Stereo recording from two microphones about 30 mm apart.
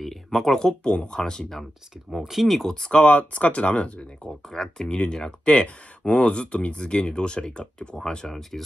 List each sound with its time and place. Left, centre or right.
0.0 s a sound: centre
0.8 s speech: left
2.2 s speech: centre
3.0 s speech: left
4.5 s speech: centre
4.8 s speech: left
8.3 s speech: centre